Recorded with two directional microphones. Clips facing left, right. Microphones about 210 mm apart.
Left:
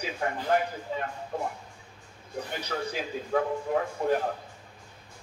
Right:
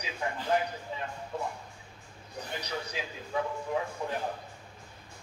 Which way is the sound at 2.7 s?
55° left (ahead or behind).